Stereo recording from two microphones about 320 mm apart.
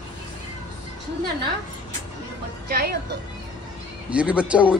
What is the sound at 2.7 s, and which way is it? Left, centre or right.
Speech, right.